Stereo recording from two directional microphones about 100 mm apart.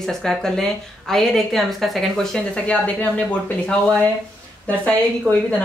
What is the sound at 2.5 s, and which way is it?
Speech, 15° left (ahead or behind).